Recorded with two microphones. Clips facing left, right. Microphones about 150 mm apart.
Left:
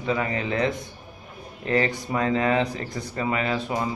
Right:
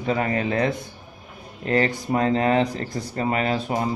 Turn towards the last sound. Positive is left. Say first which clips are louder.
# right 2 dB
turn(degrees=-40)  # may be behind; listen again after turning